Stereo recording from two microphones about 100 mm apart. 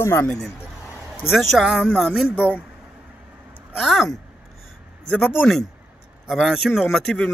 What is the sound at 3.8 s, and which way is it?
Speech, centre (ahead or behind).